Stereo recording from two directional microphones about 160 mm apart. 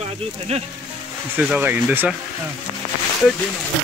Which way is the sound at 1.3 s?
10° right (ahead or behind).